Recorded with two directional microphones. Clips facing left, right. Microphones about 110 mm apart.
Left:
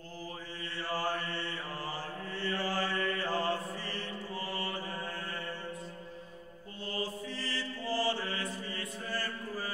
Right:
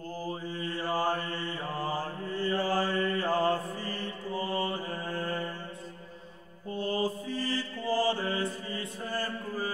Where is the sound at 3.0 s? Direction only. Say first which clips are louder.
Right 4 dB; 25° right (ahead or behind).